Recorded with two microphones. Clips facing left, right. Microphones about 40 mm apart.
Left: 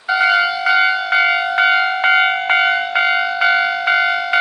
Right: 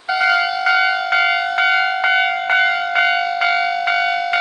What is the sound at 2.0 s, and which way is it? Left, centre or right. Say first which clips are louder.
Church bell: left 2 dB; left.